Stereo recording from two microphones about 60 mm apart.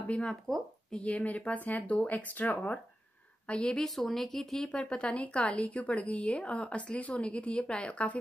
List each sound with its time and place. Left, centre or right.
0.2 s speech: centre
0.9 s a woman's voice: left
3.8 s speech: centre
4.6 s a woman's voice: centre